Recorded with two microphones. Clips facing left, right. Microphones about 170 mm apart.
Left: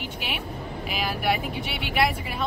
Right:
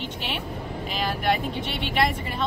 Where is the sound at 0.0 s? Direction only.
5° left (ahead or behind).